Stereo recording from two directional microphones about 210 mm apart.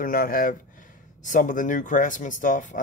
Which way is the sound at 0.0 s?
40° left (ahead or behind).